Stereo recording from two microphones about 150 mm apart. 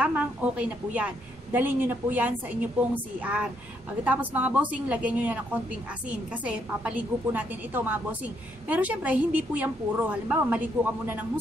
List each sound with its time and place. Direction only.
0.0 s a woman's voice: 10° right (ahead or behind)